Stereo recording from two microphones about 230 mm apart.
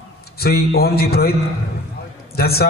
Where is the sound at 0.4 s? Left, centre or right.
Left.